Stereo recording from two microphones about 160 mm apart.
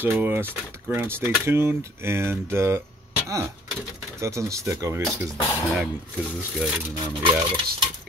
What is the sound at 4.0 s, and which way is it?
Speech, 20° right (ahead or behind).